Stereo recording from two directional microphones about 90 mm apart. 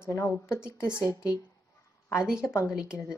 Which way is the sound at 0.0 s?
30° left (ahead or behind).